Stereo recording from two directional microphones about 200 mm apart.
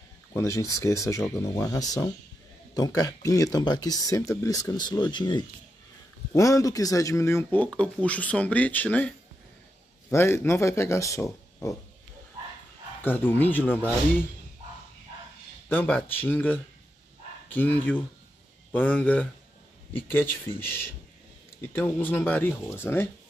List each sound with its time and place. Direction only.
0.3 s speech: 15° left (ahead or behind)
13.0 s speech: 10° left (ahead or behind)
15.7 s speech: 10° left (ahead or behind)